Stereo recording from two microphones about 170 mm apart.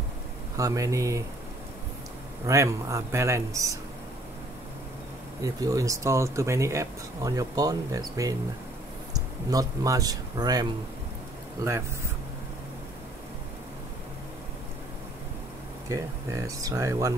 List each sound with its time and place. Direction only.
0.6 s speech: 20° right (ahead or behind)
2.4 s speech: 15° right (ahead or behind)
5.4 s speech: 20° right (ahead or behind)
9.5 s speech: 20° right (ahead or behind)
15.9 s speech: 20° right (ahead or behind)